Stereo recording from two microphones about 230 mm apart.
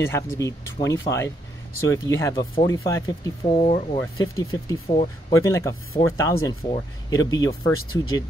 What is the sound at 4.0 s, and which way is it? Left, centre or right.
Speech, centre.